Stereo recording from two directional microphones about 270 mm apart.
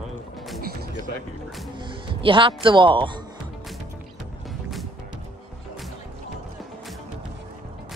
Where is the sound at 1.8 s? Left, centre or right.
Centre.